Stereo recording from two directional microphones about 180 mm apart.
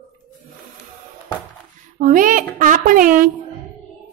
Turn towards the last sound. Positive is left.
turn(degrees=-50)  # may be behind; listen again after turning